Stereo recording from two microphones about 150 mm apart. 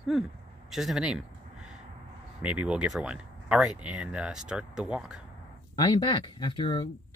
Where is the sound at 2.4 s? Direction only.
5° right (ahead or behind).